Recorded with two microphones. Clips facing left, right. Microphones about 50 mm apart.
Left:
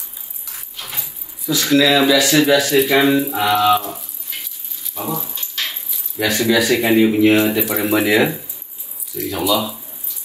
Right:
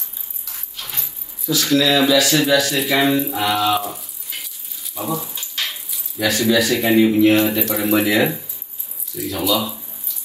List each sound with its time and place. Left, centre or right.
0.5 s dog: centre
1.5 s speech: centre
2.8 s speech: centre
4.9 s keys jangling: centre
6.1 s speech: left; by 9.8 s centre